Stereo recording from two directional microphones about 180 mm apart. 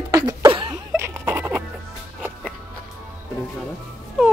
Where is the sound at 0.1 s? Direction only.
20° right (ahead or behind).